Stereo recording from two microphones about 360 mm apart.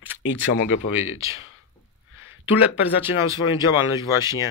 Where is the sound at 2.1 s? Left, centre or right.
Left.